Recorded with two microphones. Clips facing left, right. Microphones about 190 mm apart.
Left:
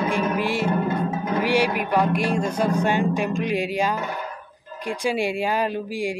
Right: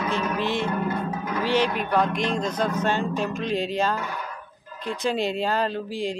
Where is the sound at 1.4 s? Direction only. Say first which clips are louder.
Left 1 dB; 10° left (ahead or behind).